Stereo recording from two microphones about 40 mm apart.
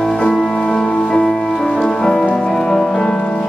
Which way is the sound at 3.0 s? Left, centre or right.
Left.